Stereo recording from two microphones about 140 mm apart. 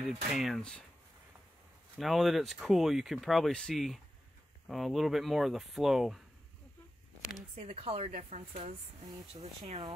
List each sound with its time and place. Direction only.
0.3 s speech: centre (ahead or behind)
2.0 s speech: centre (ahead or behind)
7.2 s a sound: 5° right (ahead or behind)
7.5 s speech: 45° right (ahead or behind)